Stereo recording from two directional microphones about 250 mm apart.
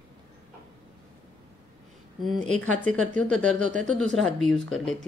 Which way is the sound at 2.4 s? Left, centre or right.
Right.